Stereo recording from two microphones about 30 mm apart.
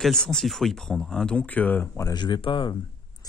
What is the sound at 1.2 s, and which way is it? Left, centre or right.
Speech, left.